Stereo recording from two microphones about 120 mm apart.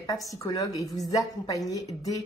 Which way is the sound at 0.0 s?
30° left (ahead or behind).